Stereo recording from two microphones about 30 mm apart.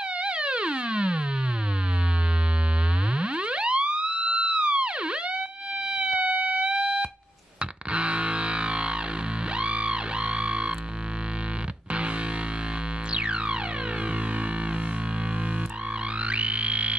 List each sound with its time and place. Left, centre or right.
0.2 s siren: right
3.2 s music: right
5.9 s siren: right
6.1 s music: right
13.1 s music: right
16.3 s music: right